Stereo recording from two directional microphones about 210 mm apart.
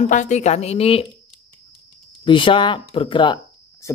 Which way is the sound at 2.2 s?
25° left (ahead or behind).